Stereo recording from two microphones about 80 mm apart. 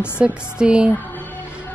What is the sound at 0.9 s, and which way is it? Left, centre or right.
Music, left.